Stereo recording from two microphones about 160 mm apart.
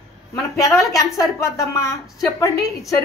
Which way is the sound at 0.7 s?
20° left (ahead or behind).